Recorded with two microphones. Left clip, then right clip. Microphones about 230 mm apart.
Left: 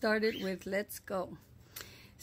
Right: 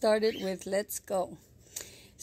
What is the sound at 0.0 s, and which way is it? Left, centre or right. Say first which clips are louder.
Speech: right 5 dB; centre.